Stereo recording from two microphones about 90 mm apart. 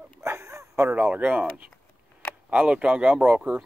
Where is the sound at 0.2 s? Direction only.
30° right (ahead or behind).